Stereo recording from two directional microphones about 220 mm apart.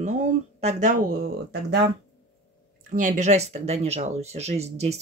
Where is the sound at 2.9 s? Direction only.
35° right (ahead or behind).